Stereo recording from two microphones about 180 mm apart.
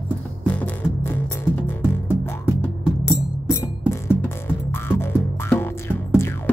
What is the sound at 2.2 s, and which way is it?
Music, 15° left (ahead or behind).